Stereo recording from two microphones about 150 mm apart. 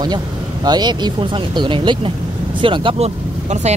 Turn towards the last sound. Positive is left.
turn(degrees=-35)  # may be behind; listen again after turning